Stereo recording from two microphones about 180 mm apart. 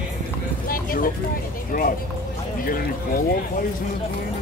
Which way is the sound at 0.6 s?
50° left (ahead or behind).